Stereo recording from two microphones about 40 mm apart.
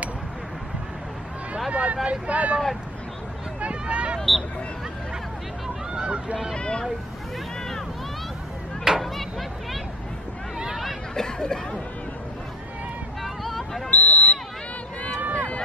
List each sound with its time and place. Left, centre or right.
1.7 s speech: right
3.6 s a sound: right
5.9 s speech: right
6.5 s speech: left
8.9 s chop: centre
11.1 s speech: centre
13.2 s vehicle: centre
13.8 s a sound: left